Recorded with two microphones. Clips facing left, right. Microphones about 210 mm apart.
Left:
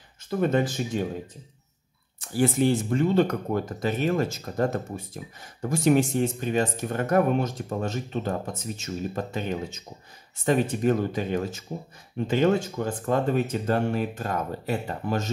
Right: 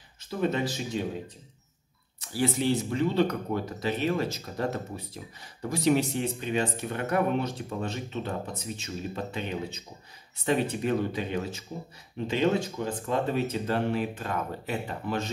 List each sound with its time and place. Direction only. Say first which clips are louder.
0.4 s speech: left 4 dB; 50° left (ahead or behind)